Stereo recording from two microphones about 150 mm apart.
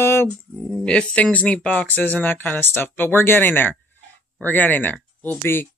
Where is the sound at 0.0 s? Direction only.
15° left (ahead or behind).